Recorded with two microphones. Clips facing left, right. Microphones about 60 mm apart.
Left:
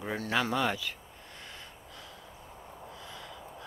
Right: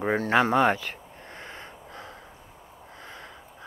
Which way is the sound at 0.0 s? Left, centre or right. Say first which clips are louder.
Right 9 dB; right.